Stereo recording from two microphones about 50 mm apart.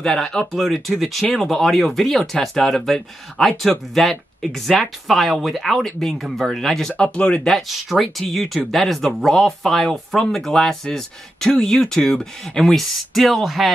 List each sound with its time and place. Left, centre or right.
0.0 s speech: centre
7.0 s speech: left
7.9 s speech: centre